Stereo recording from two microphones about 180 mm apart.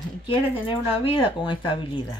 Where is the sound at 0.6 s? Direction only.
25° left (ahead or behind).